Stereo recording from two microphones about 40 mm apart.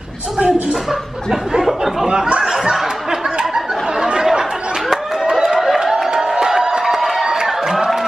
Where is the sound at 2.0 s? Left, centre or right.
Right.